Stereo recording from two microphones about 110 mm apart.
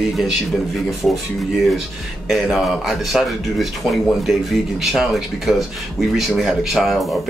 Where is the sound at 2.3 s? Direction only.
5° right (ahead or behind).